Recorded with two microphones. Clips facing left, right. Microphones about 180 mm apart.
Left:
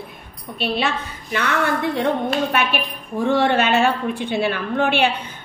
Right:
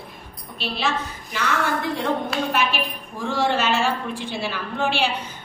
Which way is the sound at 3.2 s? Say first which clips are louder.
Left 5 dB; 60° left (ahead or behind).